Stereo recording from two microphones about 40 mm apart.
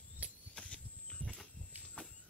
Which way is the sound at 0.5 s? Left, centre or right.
Left.